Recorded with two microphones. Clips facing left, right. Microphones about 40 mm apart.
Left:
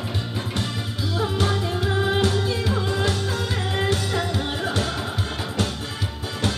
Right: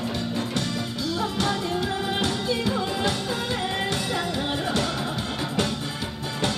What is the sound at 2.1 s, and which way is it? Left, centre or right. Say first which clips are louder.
Music: left 3 dB; centre.